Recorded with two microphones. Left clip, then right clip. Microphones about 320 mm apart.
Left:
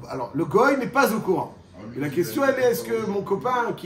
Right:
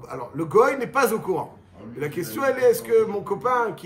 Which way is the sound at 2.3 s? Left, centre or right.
Centre.